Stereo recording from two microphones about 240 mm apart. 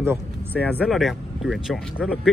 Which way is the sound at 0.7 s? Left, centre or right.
Centre.